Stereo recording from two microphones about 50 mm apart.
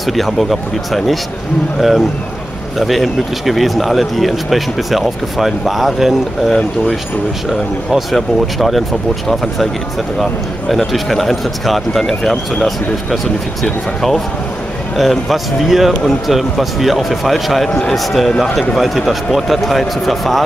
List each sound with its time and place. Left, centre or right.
0.0 s speech: centre
7.9 s speech: centre
10.7 s speech: centre